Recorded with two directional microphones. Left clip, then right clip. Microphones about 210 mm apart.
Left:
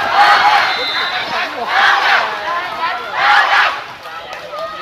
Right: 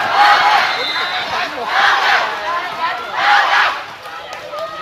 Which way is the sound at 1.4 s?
20° left (ahead or behind).